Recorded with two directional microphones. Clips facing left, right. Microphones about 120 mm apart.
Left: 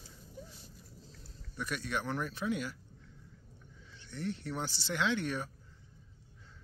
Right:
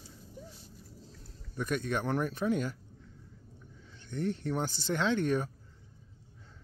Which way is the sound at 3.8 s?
45° right (ahead or behind).